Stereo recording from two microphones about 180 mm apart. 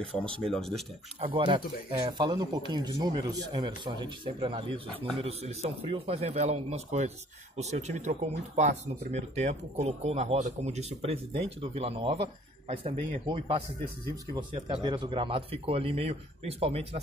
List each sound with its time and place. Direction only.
0.0 s speech: 5° left (ahead or behind)
1.2 s speech: 30° right (ahead or behind)
14.8 s speech: 25° right (ahead or behind)